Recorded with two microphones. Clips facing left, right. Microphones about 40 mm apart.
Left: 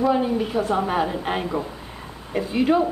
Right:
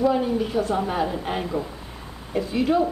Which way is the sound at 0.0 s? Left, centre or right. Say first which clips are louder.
Left 1 dB; centre.